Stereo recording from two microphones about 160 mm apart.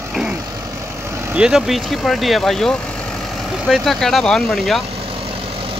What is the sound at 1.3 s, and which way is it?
Speech, 5° right (ahead or behind).